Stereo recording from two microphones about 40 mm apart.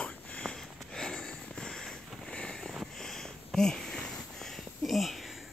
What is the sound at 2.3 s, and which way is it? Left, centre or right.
Vehicle, left.